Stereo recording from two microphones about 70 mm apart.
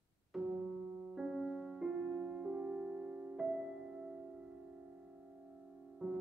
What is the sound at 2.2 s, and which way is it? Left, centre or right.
Music, centre.